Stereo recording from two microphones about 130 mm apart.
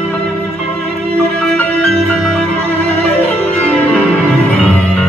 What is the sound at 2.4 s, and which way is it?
Music, 15° left (ahead or behind).